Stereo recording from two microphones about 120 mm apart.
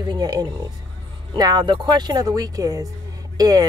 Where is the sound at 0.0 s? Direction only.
35° right (ahead or behind).